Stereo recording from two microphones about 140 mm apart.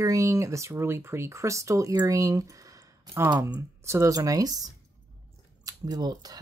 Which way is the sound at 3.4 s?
20° right (ahead or behind).